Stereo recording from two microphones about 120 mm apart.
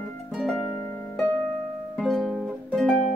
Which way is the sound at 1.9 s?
Centre (ahead or behind).